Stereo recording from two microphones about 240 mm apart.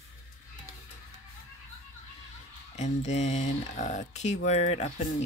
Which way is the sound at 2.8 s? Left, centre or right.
Left.